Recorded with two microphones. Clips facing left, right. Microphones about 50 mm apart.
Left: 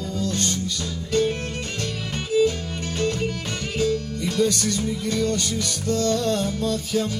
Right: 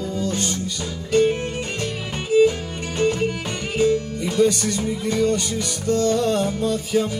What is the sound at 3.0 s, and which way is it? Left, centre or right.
Music, centre.